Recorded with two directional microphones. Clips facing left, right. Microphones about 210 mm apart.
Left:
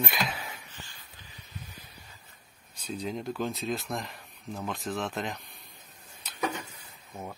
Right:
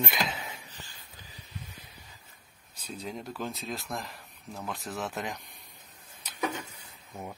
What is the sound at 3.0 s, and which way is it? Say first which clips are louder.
Speech: left 4 dB; 5° right (ahead or behind).